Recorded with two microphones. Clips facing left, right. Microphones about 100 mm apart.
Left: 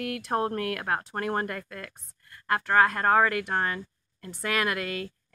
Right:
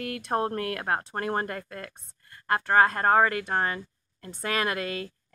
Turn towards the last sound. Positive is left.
turn(degrees=-25)  # may be behind; listen again after turning